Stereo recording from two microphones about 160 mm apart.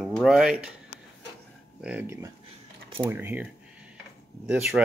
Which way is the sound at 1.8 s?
10° right (ahead or behind).